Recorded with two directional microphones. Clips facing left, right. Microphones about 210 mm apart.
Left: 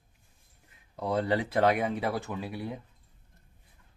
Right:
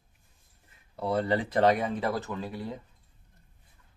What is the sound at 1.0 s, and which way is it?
Speech, 15° left (ahead or behind).